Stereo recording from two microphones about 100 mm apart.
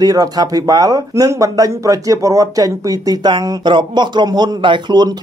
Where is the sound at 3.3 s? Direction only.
50° right (ahead or behind).